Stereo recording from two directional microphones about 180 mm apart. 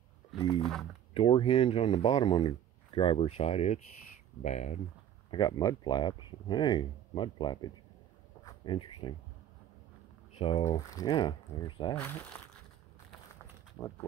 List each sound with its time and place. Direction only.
0.6 s speech: centre (ahead or behind)
1.1 s speech: 30° left (ahead or behind)
5.3 s speech: 20° left (ahead or behind)
8.5 s a sound: 25° left (ahead or behind)
10.3 s speech: 30° left (ahead or behind)
11.9 s speech: 10° left (ahead or behind)